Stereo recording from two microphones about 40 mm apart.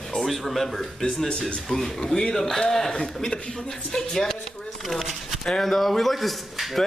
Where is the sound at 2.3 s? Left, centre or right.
Centre.